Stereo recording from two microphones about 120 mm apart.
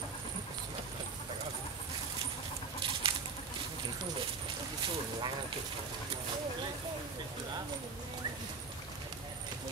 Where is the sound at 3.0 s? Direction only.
50° right (ahead or behind).